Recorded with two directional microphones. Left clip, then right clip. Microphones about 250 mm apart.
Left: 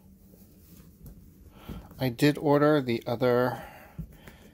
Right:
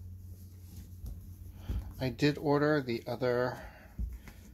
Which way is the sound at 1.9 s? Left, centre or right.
Left.